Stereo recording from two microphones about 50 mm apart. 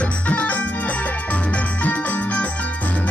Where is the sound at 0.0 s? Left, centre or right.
Left.